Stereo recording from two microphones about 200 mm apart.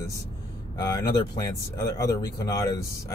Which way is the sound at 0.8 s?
15° left (ahead or behind).